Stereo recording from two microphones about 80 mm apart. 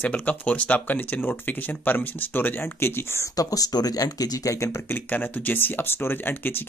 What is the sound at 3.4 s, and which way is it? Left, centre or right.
Speech, left.